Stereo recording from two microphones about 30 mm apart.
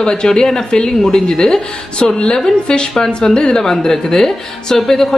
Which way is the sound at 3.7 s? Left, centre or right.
Centre.